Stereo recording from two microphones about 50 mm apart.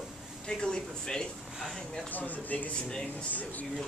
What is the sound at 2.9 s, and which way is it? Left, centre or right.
Speech, centre.